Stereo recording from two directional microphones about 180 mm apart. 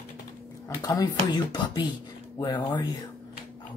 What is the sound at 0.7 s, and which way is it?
Speech, 20° left (ahead or behind).